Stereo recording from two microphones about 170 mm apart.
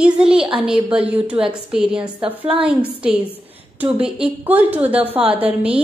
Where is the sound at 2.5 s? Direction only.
30° right (ahead or behind).